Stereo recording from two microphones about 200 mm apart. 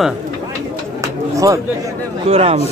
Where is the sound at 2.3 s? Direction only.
30° right (ahead or behind).